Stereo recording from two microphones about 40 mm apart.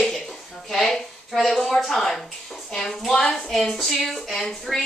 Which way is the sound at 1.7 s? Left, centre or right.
Centre.